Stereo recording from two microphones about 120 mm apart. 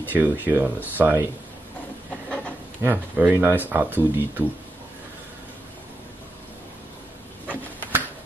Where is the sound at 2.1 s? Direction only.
10° left (ahead or behind).